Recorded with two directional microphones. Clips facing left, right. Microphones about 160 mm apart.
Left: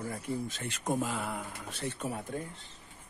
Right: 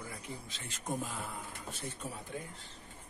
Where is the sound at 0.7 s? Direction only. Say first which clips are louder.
Left 5 dB; 85° left.